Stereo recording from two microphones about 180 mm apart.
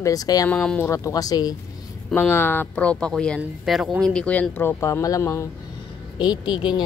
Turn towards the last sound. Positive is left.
turn(degrees=25)  # may be behind; listen again after turning